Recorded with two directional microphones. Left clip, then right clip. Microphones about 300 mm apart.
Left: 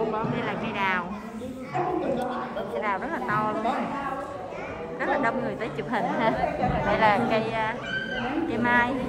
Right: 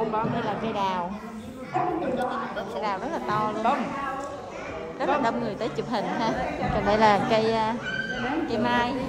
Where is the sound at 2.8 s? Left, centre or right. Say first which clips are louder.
Even; centre.